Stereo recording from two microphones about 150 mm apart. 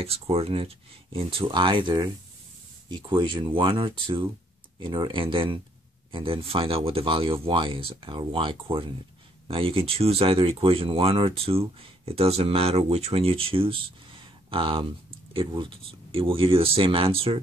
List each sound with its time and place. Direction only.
0.0 s speech: 40° right (ahead or behind)